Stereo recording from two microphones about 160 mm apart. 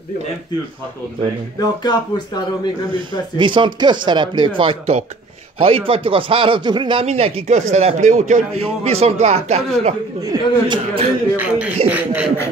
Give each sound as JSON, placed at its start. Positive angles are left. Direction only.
{"t": 1.6, "sound": "speech", "side_deg": 25}
{"t": 2.9, "sound": "speech", "side_deg": -30}
{"t": 10.3, "sound": "speech", "side_deg": -30}
{"t": 11.3, "sound": "speech", "side_deg": -10}